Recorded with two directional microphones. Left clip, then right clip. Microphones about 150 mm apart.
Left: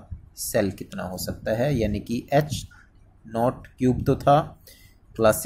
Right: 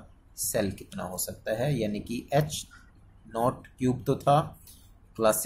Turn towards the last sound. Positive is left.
turn(degrees=25)  # may be behind; listen again after turning